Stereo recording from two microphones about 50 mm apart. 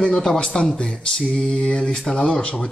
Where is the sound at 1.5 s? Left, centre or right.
Centre.